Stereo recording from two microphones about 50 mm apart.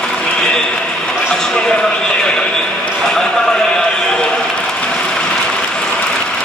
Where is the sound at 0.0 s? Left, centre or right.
Centre.